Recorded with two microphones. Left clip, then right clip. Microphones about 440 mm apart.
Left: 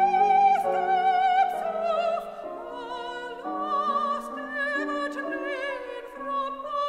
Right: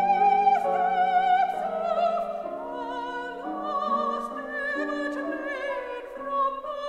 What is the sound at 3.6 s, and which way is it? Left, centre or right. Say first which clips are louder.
Music: left 1 dB; left.